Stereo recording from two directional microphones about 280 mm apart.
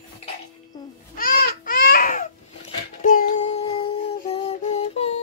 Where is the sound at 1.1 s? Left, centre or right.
Left.